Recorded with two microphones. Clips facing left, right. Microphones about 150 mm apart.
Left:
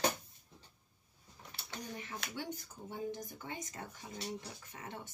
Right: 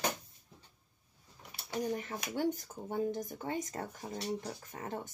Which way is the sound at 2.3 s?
45° right (ahead or behind).